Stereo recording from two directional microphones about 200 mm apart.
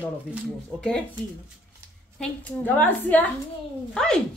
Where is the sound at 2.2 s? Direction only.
10° left (ahead or behind).